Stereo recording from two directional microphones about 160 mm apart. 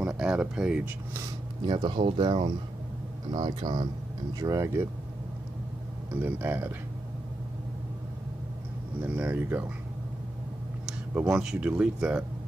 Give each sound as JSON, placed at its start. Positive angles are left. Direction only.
{"t": 0.0, "sound": "speech", "side_deg": -5}
{"t": 1.7, "sound": "speech", "side_deg": -30}
{"t": 6.2, "sound": "speech", "side_deg": -15}
{"t": 9.0, "sound": "speech", "side_deg": -10}
{"t": 10.9, "sound": "speech", "side_deg": -5}